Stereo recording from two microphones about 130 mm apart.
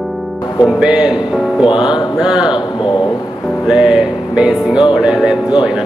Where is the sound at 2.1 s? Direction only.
5° right (ahead or behind).